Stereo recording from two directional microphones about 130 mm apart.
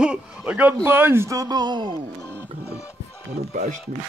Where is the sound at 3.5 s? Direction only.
90° right.